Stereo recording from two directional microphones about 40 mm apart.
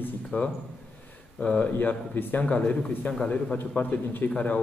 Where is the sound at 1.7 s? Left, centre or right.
Left.